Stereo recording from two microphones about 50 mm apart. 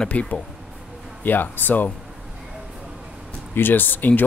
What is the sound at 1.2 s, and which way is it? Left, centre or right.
Speech, left.